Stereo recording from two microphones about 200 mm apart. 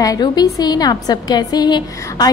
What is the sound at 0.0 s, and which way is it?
A woman's voice, 20° left (ahead or behind).